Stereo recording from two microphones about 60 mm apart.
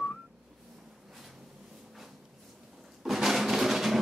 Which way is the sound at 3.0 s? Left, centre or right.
Centre.